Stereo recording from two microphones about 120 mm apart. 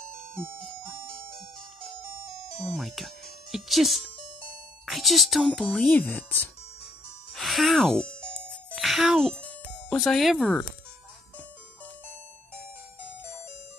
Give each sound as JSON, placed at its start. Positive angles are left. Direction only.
{"t": 2.5, "sound": "speech", "side_deg": 0}
{"t": 5.9, "sound": "speech", "side_deg": 15}
{"t": 7.3, "sound": "music", "side_deg": 0}
{"t": 9.8, "sound": "speech", "side_deg": 5}